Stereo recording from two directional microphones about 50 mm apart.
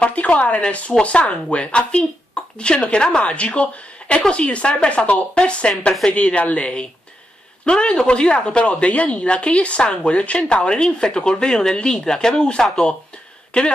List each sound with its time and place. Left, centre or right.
0.0 s speech: left